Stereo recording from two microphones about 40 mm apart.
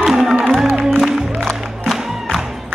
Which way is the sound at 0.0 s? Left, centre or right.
Centre.